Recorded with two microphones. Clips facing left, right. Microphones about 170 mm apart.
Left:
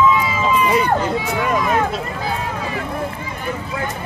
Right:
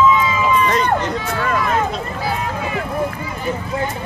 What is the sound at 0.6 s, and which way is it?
Speech, 10° left (ahead or behind).